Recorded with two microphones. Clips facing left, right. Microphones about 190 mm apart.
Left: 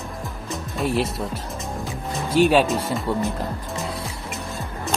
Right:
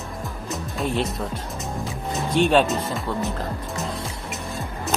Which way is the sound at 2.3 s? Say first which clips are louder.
Left 2 dB; 5° left (ahead or behind).